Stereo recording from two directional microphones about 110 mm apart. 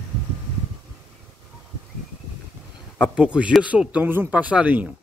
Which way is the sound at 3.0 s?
10° right (ahead or behind).